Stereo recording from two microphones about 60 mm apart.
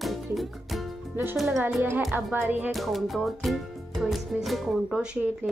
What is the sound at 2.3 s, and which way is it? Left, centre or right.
Speech, right.